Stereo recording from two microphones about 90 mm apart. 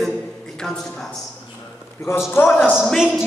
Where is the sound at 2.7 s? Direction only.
5° right (ahead or behind).